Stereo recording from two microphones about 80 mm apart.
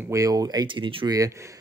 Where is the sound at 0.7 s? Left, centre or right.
Right.